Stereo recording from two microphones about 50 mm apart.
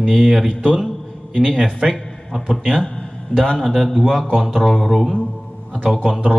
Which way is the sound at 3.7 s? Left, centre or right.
Centre.